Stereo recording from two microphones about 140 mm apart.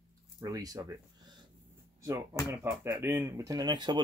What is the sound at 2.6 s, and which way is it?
Speech, 15° right (ahead or behind).